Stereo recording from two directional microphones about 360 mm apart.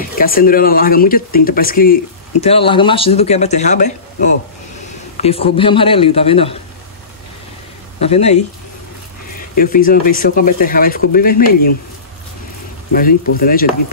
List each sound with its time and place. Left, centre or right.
0.2 s speech: left
8.0 s speech: centre
9.4 s speech: left
13.4 s speech: left